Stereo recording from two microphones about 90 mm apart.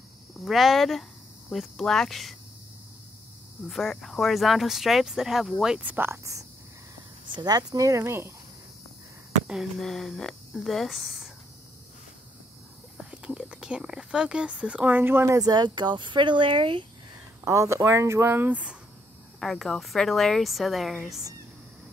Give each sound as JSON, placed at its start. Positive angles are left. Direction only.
{"t": 0.5, "sound": "speech", "side_deg": 0}
{"t": 3.6, "sound": "speech", "side_deg": 5}
{"t": 5.8, "sound": "speech", "side_deg": -20}
{"t": 7.3, "sound": "speech", "side_deg": -50}
{"t": 9.5, "sound": "speech", "side_deg": 0}
{"t": 12.9, "sound": "speech", "side_deg": -10}
{"t": 15.3, "sound": "speech", "side_deg": -50}
{"t": 17.5, "sound": "speech", "side_deg": -35}
{"t": 19.4, "sound": "speech", "side_deg": 0}